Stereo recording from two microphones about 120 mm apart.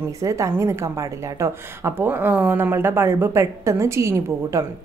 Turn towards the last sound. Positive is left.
turn(degrees=-25)  # may be behind; listen again after turning